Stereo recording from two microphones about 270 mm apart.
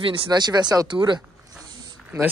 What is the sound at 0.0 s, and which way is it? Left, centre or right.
Speech, centre.